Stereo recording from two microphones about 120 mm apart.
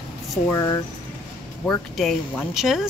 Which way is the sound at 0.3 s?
25° left (ahead or behind).